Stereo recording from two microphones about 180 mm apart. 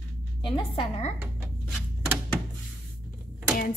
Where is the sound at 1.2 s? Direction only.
5° right (ahead or behind).